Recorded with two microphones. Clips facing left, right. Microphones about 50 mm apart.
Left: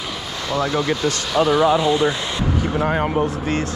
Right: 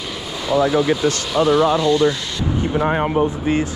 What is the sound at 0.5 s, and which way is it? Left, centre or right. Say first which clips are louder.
Speech: right 5 dB; centre.